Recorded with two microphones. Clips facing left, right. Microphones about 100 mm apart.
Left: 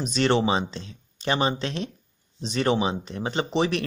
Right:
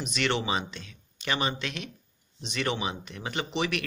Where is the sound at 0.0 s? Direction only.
35° left (ahead or behind).